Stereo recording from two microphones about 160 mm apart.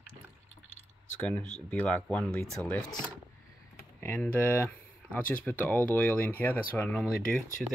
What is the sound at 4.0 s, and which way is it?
Speech, 10° left (ahead or behind).